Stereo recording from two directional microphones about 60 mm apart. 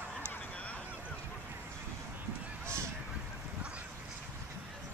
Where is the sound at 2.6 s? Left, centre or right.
Right.